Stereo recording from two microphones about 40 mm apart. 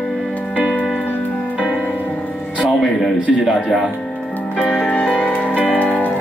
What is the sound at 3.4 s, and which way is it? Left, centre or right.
Speech, centre.